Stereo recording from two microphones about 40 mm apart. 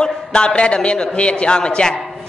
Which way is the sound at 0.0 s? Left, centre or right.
Left.